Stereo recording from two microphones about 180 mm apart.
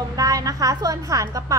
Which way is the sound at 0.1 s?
20° right (ahead or behind).